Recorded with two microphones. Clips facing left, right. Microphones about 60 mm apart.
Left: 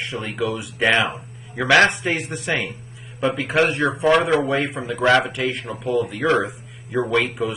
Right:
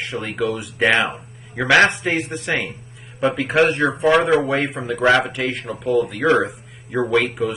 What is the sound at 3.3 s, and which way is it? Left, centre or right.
Speech, centre.